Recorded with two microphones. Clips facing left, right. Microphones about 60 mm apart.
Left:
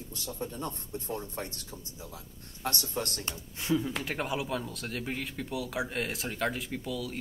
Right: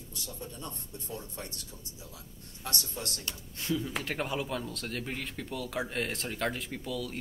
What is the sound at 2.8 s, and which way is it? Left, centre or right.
Speech, left.